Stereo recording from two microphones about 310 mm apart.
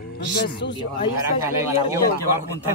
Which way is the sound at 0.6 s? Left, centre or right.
Left.